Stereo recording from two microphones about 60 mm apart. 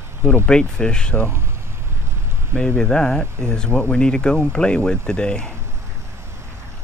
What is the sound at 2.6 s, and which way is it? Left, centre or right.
Speech, centre.